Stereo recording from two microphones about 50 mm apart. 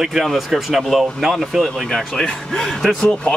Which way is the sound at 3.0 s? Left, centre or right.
Left.